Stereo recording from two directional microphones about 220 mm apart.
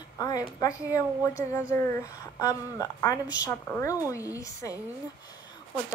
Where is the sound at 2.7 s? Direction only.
15° left (ahead or behind).